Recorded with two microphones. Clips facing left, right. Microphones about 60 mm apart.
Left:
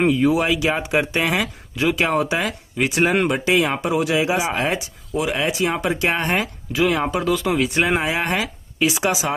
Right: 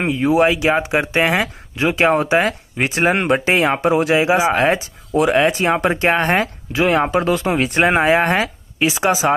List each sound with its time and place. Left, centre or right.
0.0 s speech: right
3.9 s speech: right
5.1 s speech: right